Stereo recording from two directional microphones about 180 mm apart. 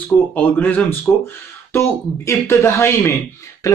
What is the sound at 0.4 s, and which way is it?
Speech, 10° left (ahead or behind).